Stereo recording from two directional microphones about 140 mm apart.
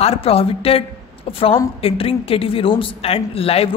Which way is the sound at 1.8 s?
40° left (ahead or behind).